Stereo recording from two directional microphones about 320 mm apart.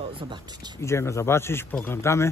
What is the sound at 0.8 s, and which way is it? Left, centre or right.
Speech, centre.